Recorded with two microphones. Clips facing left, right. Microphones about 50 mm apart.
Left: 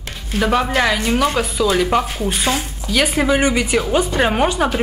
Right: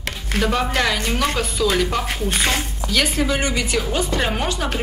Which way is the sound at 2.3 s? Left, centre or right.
Right.